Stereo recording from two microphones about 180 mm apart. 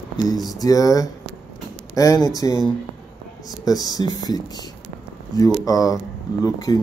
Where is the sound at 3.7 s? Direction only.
20° left (ahead or behind).